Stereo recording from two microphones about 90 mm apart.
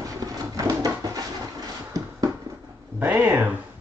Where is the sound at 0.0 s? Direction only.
40° right (ahead or behind).